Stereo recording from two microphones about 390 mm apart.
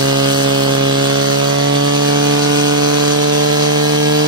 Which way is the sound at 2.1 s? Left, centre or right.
Right.